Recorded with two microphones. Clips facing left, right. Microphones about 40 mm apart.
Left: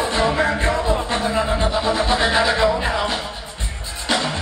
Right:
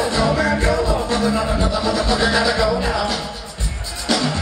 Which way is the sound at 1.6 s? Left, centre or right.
Left.